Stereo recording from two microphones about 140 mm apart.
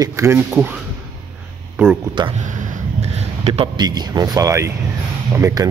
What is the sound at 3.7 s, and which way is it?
Speech, 30° right (ahead or behind).